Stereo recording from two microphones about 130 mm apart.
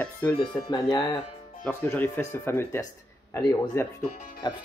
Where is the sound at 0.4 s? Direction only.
35° left (ahead or behind).